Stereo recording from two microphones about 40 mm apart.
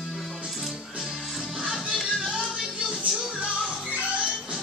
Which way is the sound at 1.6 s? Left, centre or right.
Centre.